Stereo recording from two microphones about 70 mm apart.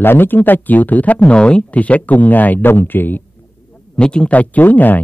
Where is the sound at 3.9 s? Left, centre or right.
Centre.